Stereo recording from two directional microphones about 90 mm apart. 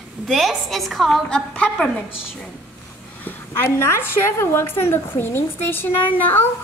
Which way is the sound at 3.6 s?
30° left (ahead or behind).